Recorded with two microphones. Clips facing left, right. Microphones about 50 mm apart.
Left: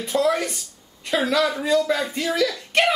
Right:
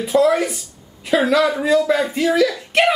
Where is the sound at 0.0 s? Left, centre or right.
Centre.